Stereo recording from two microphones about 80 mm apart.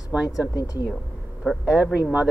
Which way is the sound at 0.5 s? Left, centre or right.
Left.